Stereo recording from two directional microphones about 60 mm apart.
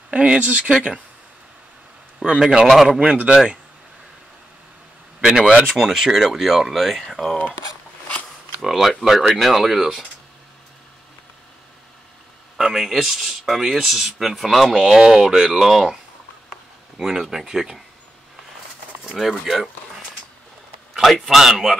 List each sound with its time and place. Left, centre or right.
0.1 s speech: centre
2.2 s speech: centre
5.2 s speech: centre
5.8 s speech: centre
8.5 s speech: centre
12.5 s speech: centre
17.0 s speech: centre
19.0 s speech: centre
20.9 s speech: centre